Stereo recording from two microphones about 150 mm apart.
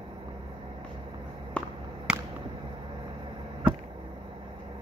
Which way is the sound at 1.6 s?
5° left (ahead or behind).